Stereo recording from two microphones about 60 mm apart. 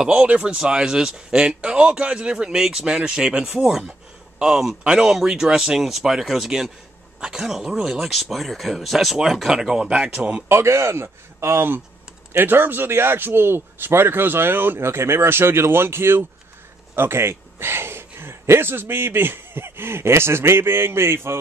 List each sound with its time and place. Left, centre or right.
0.0 s speech: centre
10.5 s a man's voice: right